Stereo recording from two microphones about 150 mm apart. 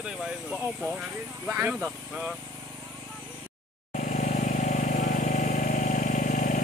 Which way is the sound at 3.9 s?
55° left (ahead or behind).